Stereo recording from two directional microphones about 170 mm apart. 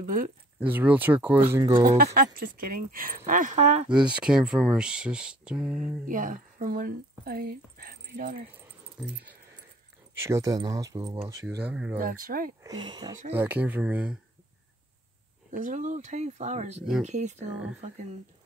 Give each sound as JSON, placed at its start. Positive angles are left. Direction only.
{"t": 0.0, "sound": "speech", "side_deg": -50}
{"t": 0.6, "sound": "speech", "side_deg": -10}
{"t": 1.8, "sound": "speech", "side_deg": -50}
{"t": 3.9, "sound": "speech", "side_deg": -5}
{"t": 6.0, "sound": "speech", "side_deg": -50}
{"t": 9.0, "sound": "speech", "side_deg": -5}
{"t": 10.1, "sound": "speech", "side_deg": -15}
{"t": 12.0, "sound": "speech", "side_deg": -55}
{"t": 12.6, "sound": "speech", "side_deg": -25}
{"t": 13.3, "sound": "speech", "side_deg": -10}
{"t": 15.5, "sound": "speech", "side_deg": -50}